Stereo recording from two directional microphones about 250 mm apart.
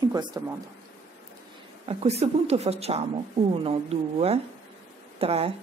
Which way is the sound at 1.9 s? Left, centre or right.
Right.